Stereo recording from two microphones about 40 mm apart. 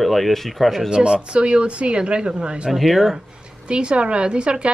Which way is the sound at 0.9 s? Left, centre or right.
Centre.